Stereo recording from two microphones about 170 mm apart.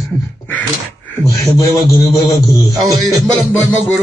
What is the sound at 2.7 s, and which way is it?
Speech, 20° right (ahead or behind).